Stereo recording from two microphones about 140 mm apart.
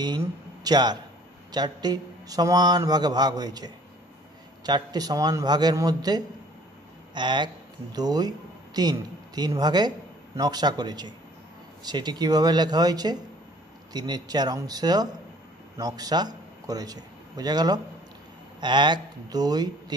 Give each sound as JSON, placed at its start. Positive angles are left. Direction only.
{"t": 0.0, "sound": "a man's voice", "side_deg": -30}